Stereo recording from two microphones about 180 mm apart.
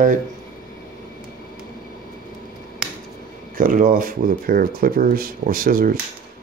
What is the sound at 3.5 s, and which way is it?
Speech, 50° right (ahead or behind).